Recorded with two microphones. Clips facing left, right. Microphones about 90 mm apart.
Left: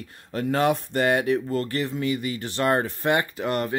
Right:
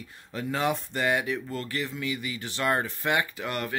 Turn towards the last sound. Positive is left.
turn(degrees=40)  # may be behind; listen again after turning